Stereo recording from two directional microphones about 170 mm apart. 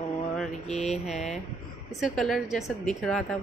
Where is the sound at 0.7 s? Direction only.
40° left (ahead or behind).